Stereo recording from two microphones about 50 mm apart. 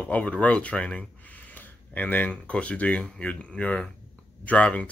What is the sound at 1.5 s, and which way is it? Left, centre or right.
Speech, left.